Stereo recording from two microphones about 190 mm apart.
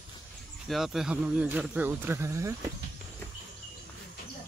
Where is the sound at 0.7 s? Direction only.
Centre (ahead or behind).